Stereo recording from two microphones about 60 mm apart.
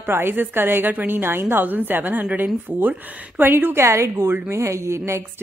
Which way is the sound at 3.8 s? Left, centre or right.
Right.